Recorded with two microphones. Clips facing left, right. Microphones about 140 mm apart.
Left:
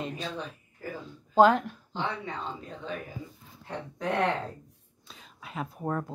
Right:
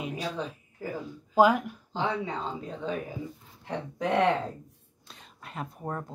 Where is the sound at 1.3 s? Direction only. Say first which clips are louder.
Left 1 dB; 10° right (ahead or behind).